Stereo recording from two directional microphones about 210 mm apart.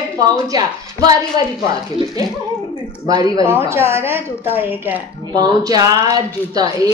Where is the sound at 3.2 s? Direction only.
15° right (ahead or behind).